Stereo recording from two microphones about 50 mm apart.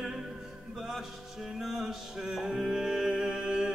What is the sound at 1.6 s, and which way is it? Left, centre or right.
Music, centre.